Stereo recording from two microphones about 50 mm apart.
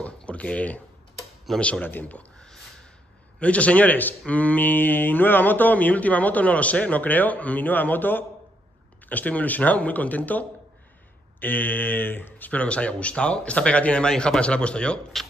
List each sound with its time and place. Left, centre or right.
0.0 s a sound: left
1.6 s speech: left
1.9 s speech: left
2.3 s a sound: centre
3.3 s speech: left
12.4 s speech: left